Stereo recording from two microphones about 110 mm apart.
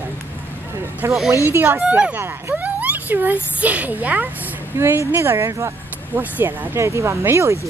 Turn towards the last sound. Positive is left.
turn(degrees=-25)  # may be behind; listen again after turning